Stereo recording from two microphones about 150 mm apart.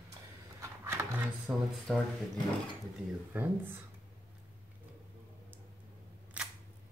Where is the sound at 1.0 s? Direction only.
20° right (ahead or behind).